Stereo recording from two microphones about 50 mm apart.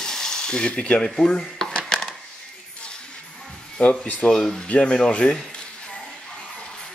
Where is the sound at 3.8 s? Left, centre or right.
Left.